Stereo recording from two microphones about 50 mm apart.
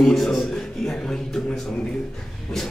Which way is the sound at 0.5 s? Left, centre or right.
Centre.